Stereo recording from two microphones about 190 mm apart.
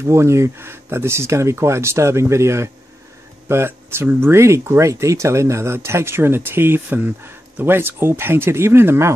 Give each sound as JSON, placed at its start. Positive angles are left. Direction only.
{"t": 0.0, "sound": "speech", "side_deg": -15}